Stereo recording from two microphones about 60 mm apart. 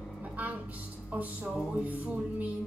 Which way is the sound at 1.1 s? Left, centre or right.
Right.